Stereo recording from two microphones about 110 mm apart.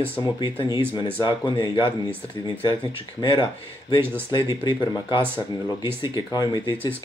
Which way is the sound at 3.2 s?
50° left (ahead or behind).